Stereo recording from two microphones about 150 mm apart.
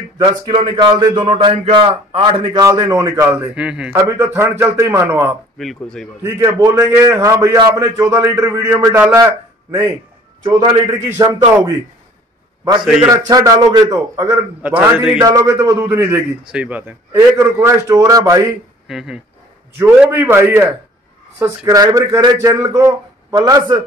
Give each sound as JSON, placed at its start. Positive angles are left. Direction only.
{"t": 0.2, "sound": "a man's voice", "side_deg": -30}
{"t": 3.9, "sound": "a man's voice", "side_deg": -20}
{"t": 5.6, "sound": "a man's voice", "side_deg": 0}
{"t": 6.2, "sound": "a man's voice", "side_deg": -20}
{"t": 12.8, "sound": "a man's voice", "side_deg": -5}
{"t": 13.1, "sound": "a man's voice", "side_deg": -25}
{"t": 14.6, "sound": "a man's voice", "side_deg": -10}
{"t": 15.2, "sound": "a man's voice", "side_deg": -20}
{"t": 18.9, "sound": "a man's voice", "side_deg": -5}